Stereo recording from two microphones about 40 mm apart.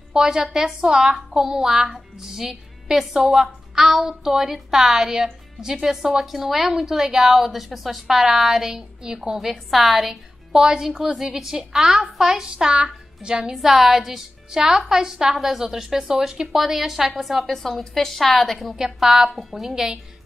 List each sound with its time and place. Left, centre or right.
0.1 s a child's voice: centre
9.5 s a child's voice: centre; by 13.6 s right
13.6 s a child's voice: centre
17.5 s a woman's voice: centre
18.8 s a child's voice: centre